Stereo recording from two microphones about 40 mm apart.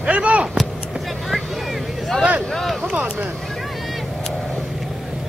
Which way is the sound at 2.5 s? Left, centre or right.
Centre.